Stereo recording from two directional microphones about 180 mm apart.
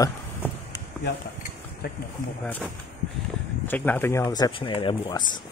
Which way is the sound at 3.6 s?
10° left (ahead or behind).